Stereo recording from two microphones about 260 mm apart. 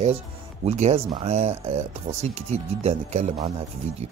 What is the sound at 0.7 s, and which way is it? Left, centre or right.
Speech, right.